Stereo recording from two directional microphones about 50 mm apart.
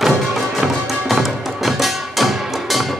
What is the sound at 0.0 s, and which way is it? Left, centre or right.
Music, centre.